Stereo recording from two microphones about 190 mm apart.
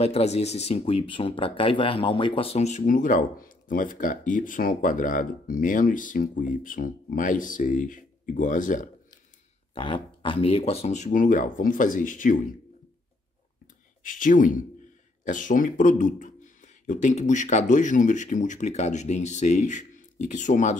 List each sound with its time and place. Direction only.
0.0 s speech: 35° left (ahead or behind)
9.8 s speech: 25° left (ahead or behind); by 12.5 s 45° left (ahead or behind)
14.0 s speech: 45° left (ahead or behind)